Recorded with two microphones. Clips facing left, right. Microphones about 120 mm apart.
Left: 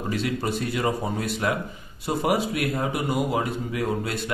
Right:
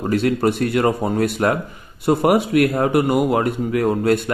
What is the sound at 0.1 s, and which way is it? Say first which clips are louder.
Speech: right 9 dB; 60° right (ahead or behind).